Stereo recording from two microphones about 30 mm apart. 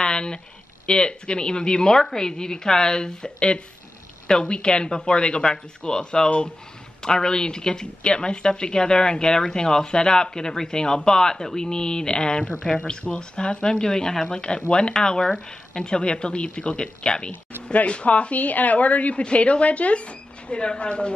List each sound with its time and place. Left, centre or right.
0.0 s a sound: left
0.8 s a woman's voice: left
17.8 s a woman's voice: left